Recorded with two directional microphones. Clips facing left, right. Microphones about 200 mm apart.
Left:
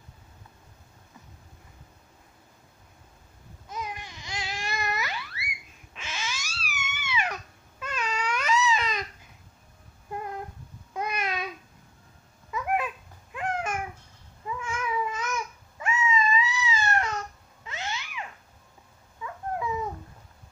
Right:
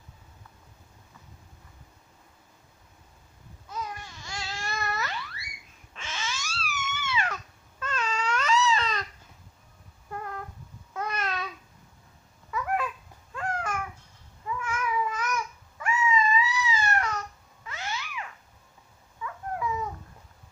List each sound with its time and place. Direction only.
3.6 s babbling: 20° left (ahead or behind)
5.9 s cat: 10° left (ahead or behind)
10.1 s a sound: 15° left (ahead or behind)
10.9 s babbling: 15° left (ahead or behind)
12.4 s babbling: 20° left (ahead or behind)
19.2 s dog: 25° left (ahead or behind)